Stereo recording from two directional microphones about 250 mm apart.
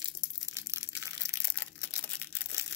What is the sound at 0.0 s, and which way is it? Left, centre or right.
Crushing, centre.